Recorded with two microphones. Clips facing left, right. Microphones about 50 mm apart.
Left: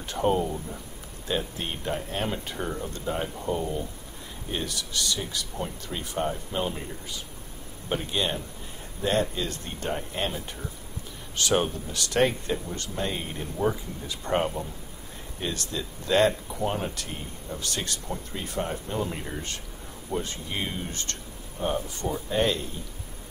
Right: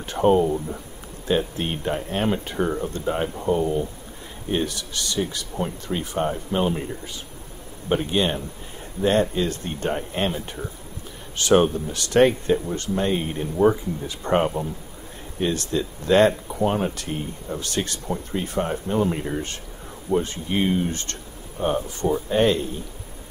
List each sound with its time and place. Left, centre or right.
0.1 s speech: right
2.5 s speech: right
4.5 s speech: right
7.9 s speech: right
11.3 s speech: right